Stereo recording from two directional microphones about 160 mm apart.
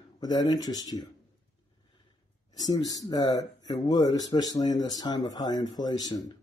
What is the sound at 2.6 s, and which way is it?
Speech, 25° left (ahead or behind).